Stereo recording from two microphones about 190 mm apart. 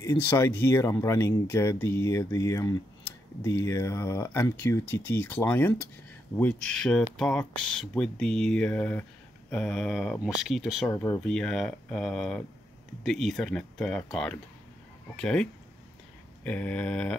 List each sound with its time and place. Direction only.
0.0 s speech: 15° left (ahead or behind); by 10.9 s centre (ahead or behind)
10.9 s speech: 15° left (ahead or behind)
11.2 s speech: 5° left (ahead or behind)
16.4 s speech: 10° left (ahead or behind)